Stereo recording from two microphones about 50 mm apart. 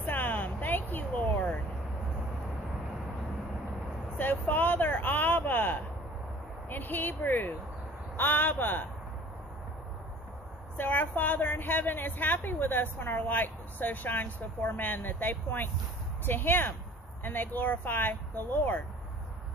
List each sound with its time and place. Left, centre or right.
0.0 s vehicle: left
4.2 s a sound: left
6.7 s a woman's voice: left
10.8 s a woman's voice: left